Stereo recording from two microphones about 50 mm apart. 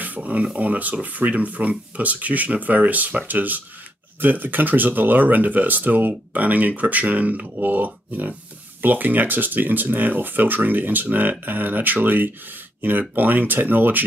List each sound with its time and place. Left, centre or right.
0.2 s speech: right